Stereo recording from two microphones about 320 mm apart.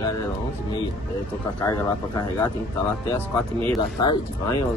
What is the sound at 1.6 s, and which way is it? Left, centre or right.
Speech, centre.